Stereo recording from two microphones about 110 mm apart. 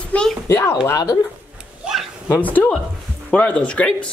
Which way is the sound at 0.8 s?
35° left (ahead or behind).